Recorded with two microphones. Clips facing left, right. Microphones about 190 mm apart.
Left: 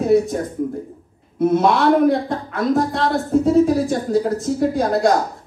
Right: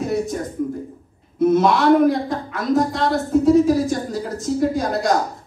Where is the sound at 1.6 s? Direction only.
55° left (ahead or behind).